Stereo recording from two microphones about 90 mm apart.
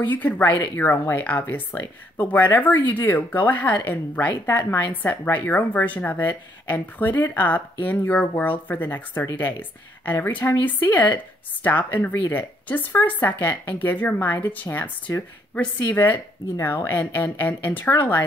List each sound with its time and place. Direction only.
0.0 s speech: 20° left (ahead or behind)